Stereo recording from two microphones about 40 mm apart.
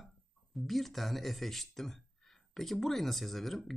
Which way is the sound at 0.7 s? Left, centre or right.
Centre.